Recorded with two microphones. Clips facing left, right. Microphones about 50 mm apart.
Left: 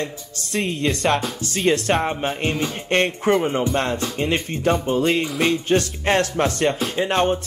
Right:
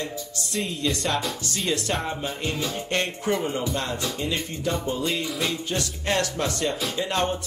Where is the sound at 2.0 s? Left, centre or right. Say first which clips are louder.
Left 6 dB; left.